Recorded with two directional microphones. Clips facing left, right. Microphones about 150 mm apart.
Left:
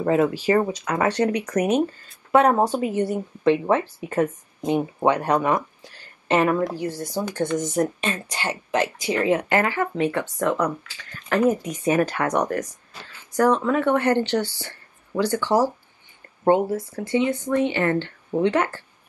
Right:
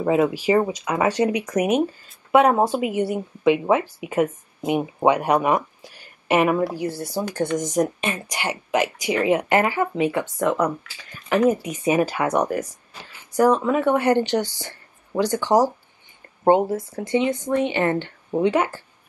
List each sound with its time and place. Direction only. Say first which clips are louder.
0.0 s speech: right 1 dB; 15° right (ahead or behind)